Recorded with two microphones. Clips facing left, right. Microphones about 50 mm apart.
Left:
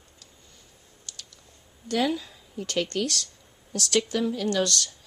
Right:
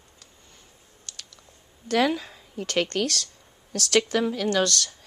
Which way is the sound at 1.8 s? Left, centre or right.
Right.